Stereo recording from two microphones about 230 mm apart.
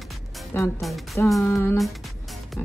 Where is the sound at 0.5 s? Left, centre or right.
Centre.